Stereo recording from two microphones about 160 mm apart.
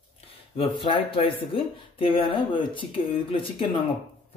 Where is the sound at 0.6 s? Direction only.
30° left (ahead or behind).